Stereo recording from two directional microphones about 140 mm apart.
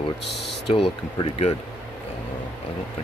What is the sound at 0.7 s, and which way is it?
Speech, 45° left (ahead or behind).